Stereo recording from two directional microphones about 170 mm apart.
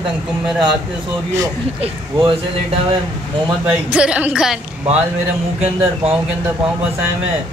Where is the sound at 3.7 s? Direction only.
5° right (ahead or behind).